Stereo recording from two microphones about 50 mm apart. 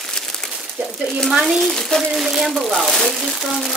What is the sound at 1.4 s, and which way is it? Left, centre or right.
Speech, centre.